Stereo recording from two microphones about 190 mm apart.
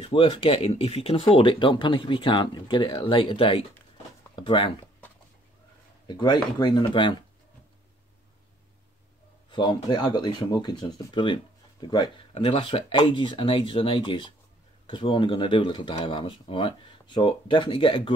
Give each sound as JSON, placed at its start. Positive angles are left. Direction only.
{"t": 0.0, "sound": "speech", "side_deg": 25}
{"t": 6.0, "sound": "speech", "side_deg": 25}
{"t": 9.5, "sound": "speech", "side_deg": 25}